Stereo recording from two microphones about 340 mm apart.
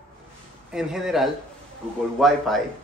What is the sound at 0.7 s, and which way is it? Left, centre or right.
A man's voice, centre.